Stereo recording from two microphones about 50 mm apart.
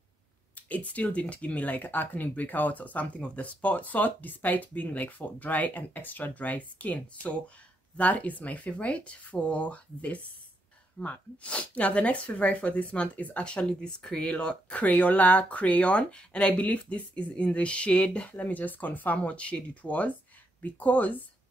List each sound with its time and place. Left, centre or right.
0.6 s speech: left
13.4 s speech: centre